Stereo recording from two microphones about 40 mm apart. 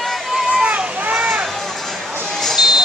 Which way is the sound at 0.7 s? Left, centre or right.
Right.